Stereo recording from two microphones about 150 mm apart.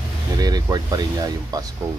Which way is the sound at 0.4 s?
25° right (ahead or behind).